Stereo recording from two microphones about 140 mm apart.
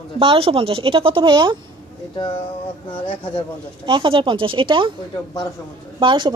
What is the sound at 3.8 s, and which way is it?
Speech, 35° right (ahead or behind).